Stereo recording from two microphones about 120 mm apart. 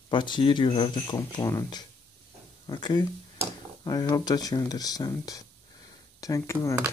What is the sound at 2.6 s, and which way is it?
Speech, 35° left (ahead or behind).